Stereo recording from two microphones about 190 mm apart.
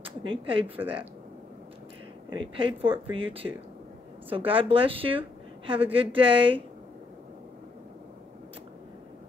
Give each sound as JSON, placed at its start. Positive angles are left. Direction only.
{"t": 0.0, "sound": "speech", "side_deg": -25}
{"t": 2.3, "sound": "a woman's voice", "side_deg": -25}